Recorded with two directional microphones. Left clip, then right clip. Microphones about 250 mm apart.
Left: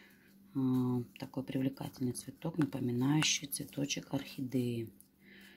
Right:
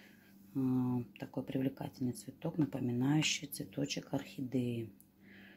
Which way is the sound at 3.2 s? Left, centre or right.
Right.